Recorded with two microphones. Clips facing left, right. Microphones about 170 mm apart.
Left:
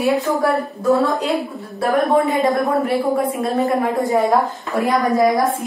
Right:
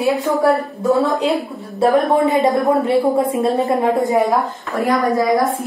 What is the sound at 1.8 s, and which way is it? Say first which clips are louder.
A woman's voice: right 2 dB; 20° right (ahead or behind).